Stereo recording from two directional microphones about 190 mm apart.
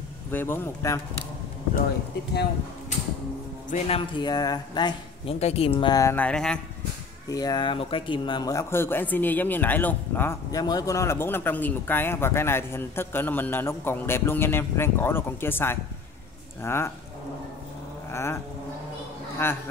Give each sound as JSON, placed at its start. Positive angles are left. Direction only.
{"t": 0.3, "sound": "speech", "side_deg": 10}
{"t": 3.7, "sound": "speech", "side_deg": 30}
{"t": 7.2, "sound": "speech", "side_deg": 20}
{"t": 18.1, "sound": "speech", "side_deg": 15}
{"t": 19.4, "sound": "speech", "side_deg": 10}